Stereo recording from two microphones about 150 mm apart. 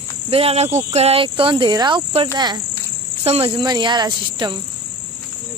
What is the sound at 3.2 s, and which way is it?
Speech, 40° right (ahead or behind).